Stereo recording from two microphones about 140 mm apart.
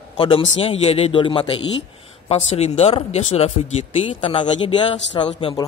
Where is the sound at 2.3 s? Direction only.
50° left (ahead or behind).